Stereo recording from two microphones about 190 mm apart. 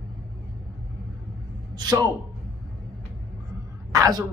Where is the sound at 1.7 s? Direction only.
20° right (ahead or behind).